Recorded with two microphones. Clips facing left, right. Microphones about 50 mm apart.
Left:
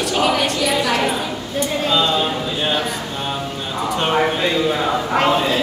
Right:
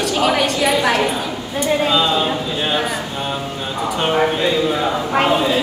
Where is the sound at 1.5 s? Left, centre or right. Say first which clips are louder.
Right 2 dB; centre.